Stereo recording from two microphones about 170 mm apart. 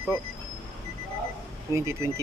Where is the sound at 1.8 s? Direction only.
15° right (ahead or behind).